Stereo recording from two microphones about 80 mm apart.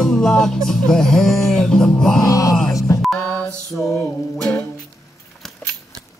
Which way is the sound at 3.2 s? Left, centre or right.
Centre.